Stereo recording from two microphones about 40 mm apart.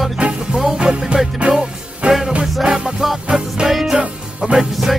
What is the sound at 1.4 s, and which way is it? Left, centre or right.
Music, right.